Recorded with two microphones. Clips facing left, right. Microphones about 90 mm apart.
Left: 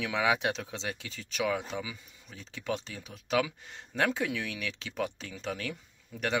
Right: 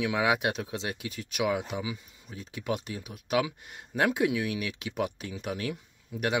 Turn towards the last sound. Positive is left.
turn(degrees=-10)  # may be behind; listen again after turning